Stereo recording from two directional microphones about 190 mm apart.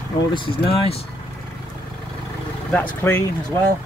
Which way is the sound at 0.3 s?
30° left (ahead or behind).